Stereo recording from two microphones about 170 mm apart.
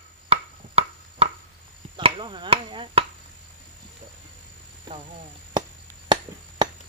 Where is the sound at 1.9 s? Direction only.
30° right (ahead or behind).